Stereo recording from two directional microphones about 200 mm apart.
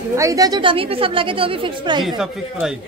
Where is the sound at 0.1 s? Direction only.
15° right (ahead or behind).